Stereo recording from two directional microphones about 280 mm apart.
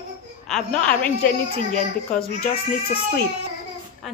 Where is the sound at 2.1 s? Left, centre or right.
Left.